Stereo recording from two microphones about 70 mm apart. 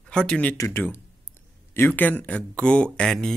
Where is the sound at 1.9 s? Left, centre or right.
Left.